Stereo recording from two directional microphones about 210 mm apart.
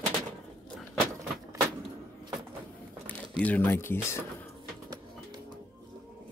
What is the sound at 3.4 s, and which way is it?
Speech, 10° left (ahead or behind).